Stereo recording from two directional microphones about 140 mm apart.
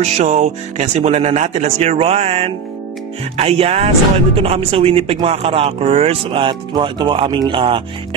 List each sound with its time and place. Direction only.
0.0 s speech: 55° right (ahead or behind); by 7.8 s 35° right (ahead or behind)